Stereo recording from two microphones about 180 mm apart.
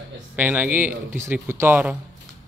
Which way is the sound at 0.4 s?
10° right (ahead or behind).